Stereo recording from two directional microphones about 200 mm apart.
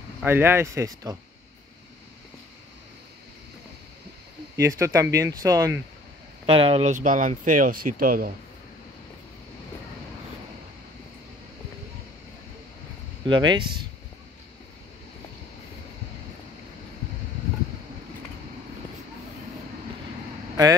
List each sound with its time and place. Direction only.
0.2 s speech: 10° right (ahead or behind)
4.6 s speech: 15° right (ahead or behind)
6.4 s speech: 30° right (ahead or behind); by 8.3 s 45° right (ahead or behind)
13.2 s speech: 20° right (ahead or behind)